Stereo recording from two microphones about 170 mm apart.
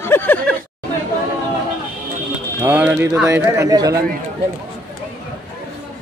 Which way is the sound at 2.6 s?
10° right (ahead or behind).